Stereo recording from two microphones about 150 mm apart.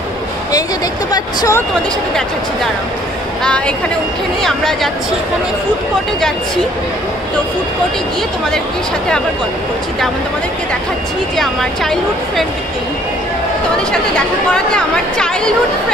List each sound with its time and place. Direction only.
1.1 s speech: 25° left (ahead or behind)
3.4 s a woman's voice: 5° left (ahead or behind)
11.3 s speech: centre (ahead or behind)